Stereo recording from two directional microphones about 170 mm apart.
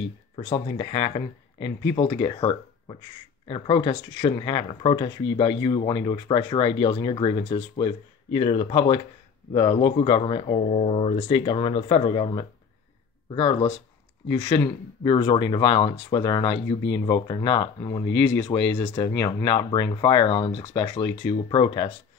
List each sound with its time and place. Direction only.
0.4 s speech: 35° left (ahead or behind)
16.5 s speech: 90° left
17.0 s speech: 25° left (ahead or behind)
18.2 s speech: 10° left (ahead or behind); by 21.9 s 30° left (ahead or behind)